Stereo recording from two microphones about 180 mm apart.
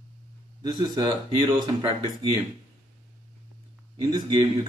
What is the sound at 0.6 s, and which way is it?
A man's voice, 20° right (ahead or behind).